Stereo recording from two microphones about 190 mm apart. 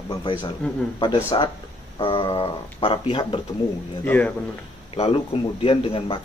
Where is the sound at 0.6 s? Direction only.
5° left (ahead or behind).